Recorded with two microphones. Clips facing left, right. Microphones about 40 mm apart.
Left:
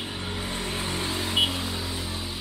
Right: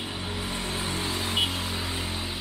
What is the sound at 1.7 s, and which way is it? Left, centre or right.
Vehicle, right.